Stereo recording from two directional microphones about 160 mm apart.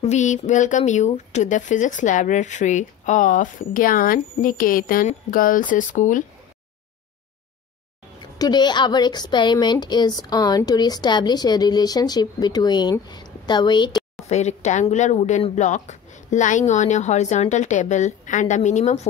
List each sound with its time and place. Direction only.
0.0 s speech: 50° left (ahead or behind)
8.4 s a woman's voice: 25° left (ahead or behind)
14.3 s speech: 45° left (ahead or behind)